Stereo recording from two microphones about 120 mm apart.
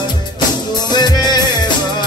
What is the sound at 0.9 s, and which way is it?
Music, 35° left (ahead or behind).